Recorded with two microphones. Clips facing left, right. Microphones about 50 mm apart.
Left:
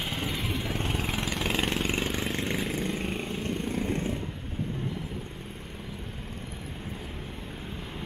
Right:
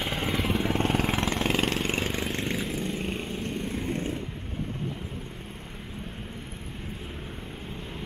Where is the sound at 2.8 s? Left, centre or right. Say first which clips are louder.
Even; centre.